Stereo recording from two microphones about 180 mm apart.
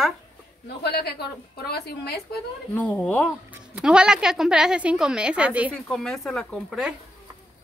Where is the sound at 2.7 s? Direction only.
10° left (ahead or behind).